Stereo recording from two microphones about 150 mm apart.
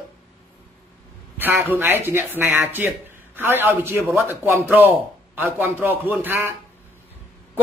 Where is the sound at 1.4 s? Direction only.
15° right (ahead or behind).